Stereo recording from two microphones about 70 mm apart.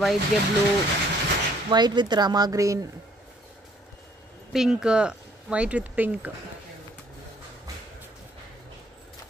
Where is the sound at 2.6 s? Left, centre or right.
Right.